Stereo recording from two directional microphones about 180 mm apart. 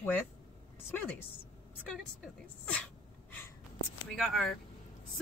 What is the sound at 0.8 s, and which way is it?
Speech, 10° left (ahead or behind).